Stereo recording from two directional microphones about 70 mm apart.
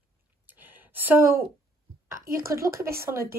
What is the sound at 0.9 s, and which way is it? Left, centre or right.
Speech, right.